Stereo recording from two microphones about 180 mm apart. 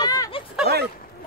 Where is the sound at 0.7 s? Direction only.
65° right (ahead or behind).